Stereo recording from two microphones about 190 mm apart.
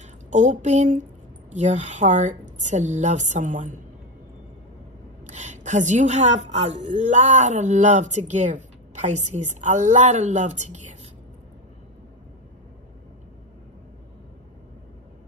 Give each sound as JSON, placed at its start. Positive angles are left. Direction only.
{"t": 0.0, "sound": "a woman's voice", "side_deg": -40}
{"t": 5.2, "sound": "a woman's voice", "side_deg": -40}